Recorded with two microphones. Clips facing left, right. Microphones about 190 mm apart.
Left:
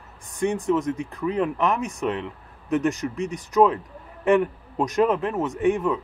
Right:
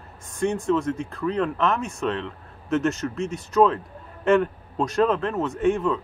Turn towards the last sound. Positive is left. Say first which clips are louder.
# even
turn(degrees=15)  # may be behind; listen again after turning